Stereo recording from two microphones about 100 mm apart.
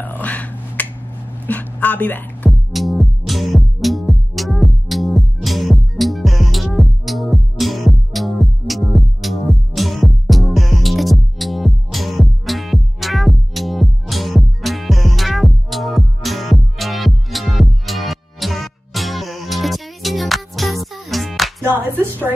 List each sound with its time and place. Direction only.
0.0 s finger snapping: 15° left (ahead or behind)
1.5 s music: 15° left (ahead or behind)
2.7 s music: centre (ahead or behind)
21.6 s a sound: 20° right (ahead or behind)